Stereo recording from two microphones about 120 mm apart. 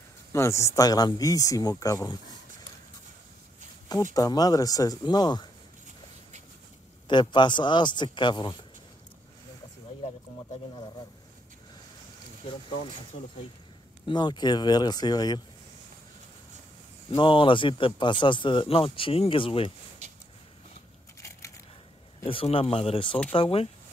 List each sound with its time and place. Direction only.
0.3 s speech: 25° left (ahead or behind)
3.9 s speech: 30° left (ahead or behind)
7.1 s speech: 40° left (ahead or behind)
14.0 s speech: 35° left (ahead or behind)
17.1 s speech: 45° left (ahead or behind)
22.2 s speech: 50° left (ahead or behind)